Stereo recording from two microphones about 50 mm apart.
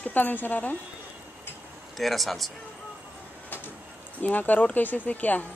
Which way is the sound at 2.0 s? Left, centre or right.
Centre.